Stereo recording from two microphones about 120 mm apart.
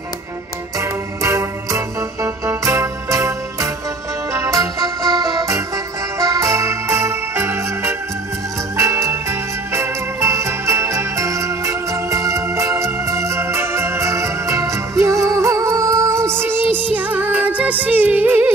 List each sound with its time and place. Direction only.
0.7 s music: 25° right (ahead or behind)